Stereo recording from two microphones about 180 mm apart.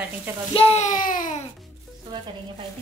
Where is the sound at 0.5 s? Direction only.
35° left (ahead or behind).